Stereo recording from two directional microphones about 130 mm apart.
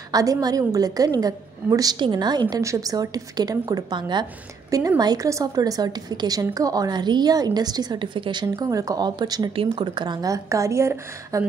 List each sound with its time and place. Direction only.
0.1 s a woman's voice: 30° right (ahead or behind)